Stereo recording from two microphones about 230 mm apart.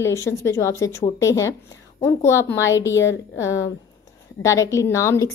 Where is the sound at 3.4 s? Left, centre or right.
Centre.